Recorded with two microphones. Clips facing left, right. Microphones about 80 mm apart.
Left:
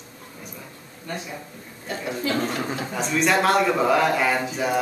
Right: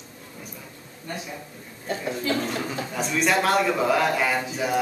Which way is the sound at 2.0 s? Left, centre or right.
Centre.